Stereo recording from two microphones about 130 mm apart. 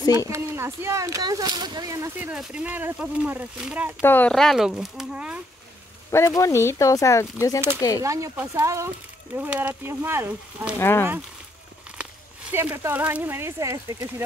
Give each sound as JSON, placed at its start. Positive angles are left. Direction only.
{"t": 0.3, "sound": "speech", "side_deg": -20}
{"t": 4.0, "sound": "speech", "side_deg": 15}
{"t": 4.3, "sound": "speech", "side_deg": 0}
{"t": 6.0, "sound": "speech", "side_deg": 20}
{"t": 8.0, "sound": "speech", "side_deg": -25}
{"t": 10.8, "sound": "speech", "side_deg": 20}
{"t": 12.0, "sound": "speech", "side_deg": -10}